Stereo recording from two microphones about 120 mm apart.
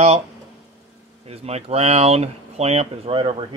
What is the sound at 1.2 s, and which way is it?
Speech, 60° right (ahead or behind).